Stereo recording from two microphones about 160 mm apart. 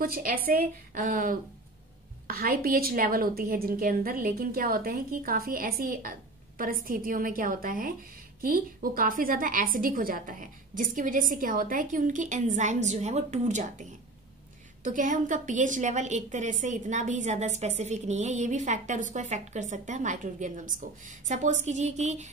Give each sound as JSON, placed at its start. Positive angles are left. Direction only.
{"t": 0.0, "sound": "a woman's voice", "side_deg": -65}